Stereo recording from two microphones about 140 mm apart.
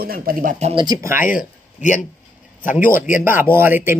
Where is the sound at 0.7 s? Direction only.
25° right (ahead or behind).